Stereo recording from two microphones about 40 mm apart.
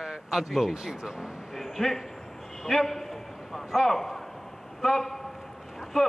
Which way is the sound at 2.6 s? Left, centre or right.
Centre.